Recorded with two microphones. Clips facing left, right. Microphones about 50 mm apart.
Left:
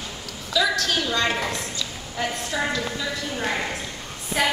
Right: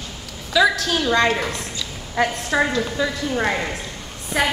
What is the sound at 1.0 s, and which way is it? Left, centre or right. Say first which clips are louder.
Speech: right 10 dB; right.